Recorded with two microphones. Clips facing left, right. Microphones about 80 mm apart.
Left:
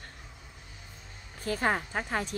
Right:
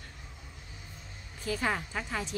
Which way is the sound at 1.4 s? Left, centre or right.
Left.